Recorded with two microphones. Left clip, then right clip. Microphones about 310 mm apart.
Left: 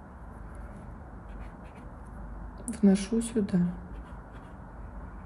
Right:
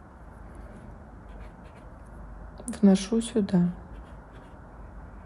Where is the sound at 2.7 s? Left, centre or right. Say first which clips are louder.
Right 3 dB; centre.